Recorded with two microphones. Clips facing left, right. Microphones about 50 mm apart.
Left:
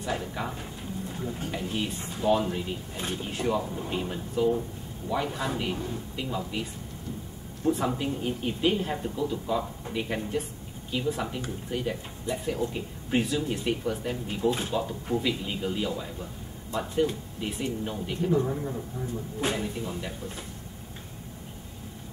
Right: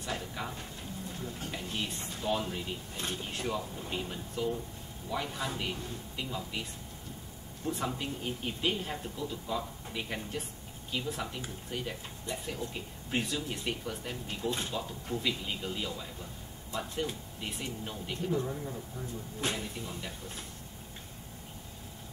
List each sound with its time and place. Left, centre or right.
0.0 s speech: centre
18.5 s speech: left
19.4 s speech: centre